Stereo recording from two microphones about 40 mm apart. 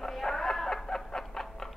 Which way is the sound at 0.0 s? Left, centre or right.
Centre.